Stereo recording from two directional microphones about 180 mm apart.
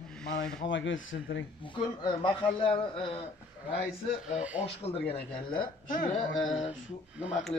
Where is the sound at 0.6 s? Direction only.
90° left.